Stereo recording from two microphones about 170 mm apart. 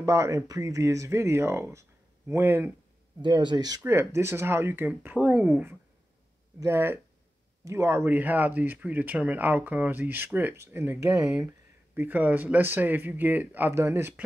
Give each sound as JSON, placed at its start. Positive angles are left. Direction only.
{"t": 0.0, "sound": "speech", "side_deg": -15}
{"t": 3.2, "sound": "speech", "side_deg": -25}